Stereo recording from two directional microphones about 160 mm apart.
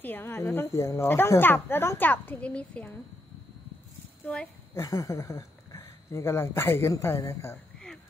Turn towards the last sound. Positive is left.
turn(degrees=15)  # may be behind; listen again after turning